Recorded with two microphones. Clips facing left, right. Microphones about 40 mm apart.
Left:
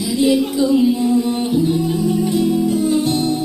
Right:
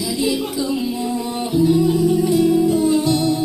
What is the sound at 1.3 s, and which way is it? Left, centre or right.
Music, left.